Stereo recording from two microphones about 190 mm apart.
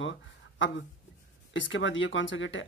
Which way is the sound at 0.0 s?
80° left.